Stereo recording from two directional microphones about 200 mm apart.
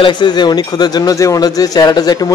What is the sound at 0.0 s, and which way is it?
Speech, 20° left (ahead or behind).